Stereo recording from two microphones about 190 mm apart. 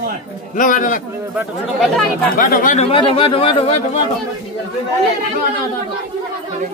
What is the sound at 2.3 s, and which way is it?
Speech, 45° left (ahead or behind).